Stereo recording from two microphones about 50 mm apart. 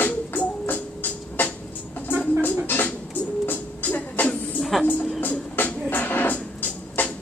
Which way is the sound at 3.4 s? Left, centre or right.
Left.